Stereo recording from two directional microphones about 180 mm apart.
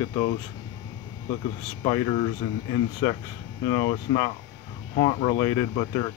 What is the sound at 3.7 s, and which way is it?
Speech, 25° left (ahead or behind).